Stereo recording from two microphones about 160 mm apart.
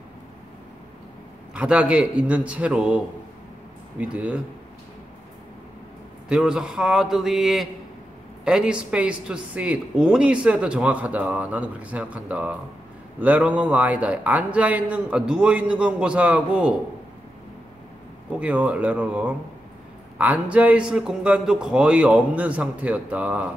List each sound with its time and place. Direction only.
1.5 s speech: 5° right (ahead or behind)
4.0 s speech: 10° right (ahead or behind)
6.2 s a man's voice: 5° right (ahead or behind)
18.3 s speech: 5° right (ahead or behind)